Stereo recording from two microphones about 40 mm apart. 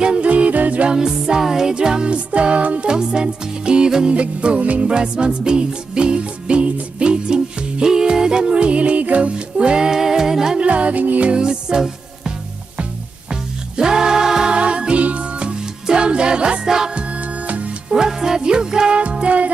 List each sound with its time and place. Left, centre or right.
0.2 s music: right
0.8 s music: centre; by 2.9 s right
2.9 s music: centre; by 4.9 s right
4.9 s music: right
10.6 s music: right
11.3 s music: right
13.7 s music: centre
14.5 s music: right
16.6 s music: centre
17.9 s music: centre
19.2 s music: right